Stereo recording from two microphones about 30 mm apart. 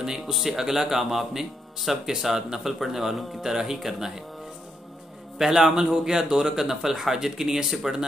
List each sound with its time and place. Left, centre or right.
0.2 s speech: centre
3.3 s speech: centre
5.4 s speech: centre